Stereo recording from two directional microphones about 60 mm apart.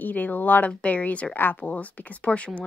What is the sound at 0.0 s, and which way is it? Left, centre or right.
Speech, left.